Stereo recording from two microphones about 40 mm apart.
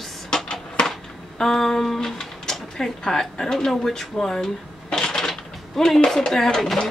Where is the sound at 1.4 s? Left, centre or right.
Centre.